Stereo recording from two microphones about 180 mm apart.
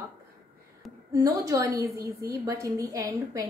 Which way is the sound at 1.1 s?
20° right (ahead or behind).